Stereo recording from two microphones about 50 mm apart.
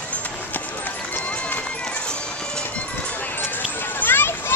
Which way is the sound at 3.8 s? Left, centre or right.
Left.